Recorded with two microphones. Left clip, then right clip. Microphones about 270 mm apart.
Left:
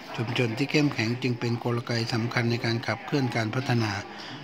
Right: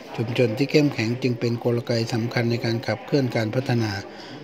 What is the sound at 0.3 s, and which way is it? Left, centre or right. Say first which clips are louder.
Speech: right 6 dB; centre.